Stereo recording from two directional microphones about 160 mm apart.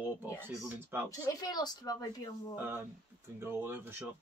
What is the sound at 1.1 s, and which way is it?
Speech, 25° left (ahead or behind).